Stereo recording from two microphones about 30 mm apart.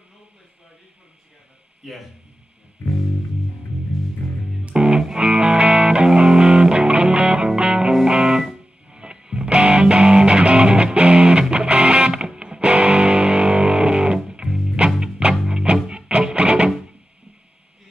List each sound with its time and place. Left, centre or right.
1.8 s a man's voice: centre
4.7 s music: centre